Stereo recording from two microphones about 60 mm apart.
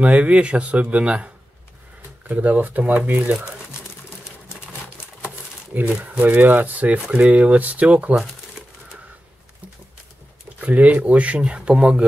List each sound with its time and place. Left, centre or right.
0.0 s speech: right
5.7 s speech: right
10.6 s speech: right